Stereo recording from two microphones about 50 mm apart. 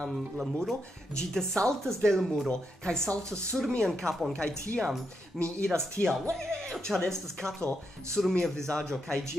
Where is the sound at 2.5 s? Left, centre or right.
Centre.